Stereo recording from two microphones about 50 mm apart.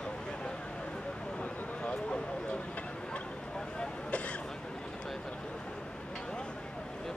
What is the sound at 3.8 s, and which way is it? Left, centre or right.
Speech, left.